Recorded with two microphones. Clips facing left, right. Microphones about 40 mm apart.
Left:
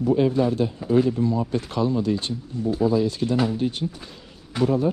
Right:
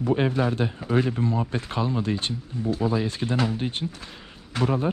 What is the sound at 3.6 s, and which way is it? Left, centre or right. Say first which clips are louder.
Speech: left 4 dB; right.